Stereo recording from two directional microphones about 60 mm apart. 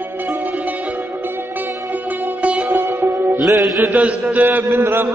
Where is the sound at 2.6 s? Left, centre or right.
Right.